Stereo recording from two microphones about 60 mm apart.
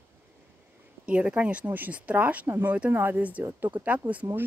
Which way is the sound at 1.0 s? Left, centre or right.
Right.